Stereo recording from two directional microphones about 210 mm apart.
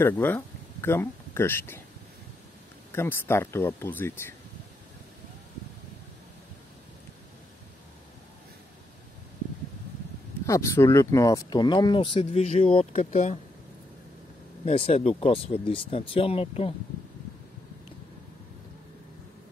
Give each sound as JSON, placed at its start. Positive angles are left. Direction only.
{"t": 0.0, "sound": "speech", "side_deg": 10}
{"t": 2.9, "sound": "speech", "side_deg": 10}
{"t": 10.4, "sound": "speech", "side_deg": 15}
{"t": 14.6, "sound": "speech", "side_deg": 30}